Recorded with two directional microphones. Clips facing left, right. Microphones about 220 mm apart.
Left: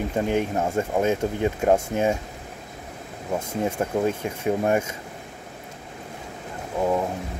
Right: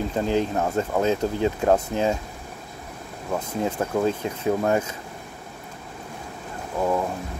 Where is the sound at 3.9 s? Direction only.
10° left (ahead or behind).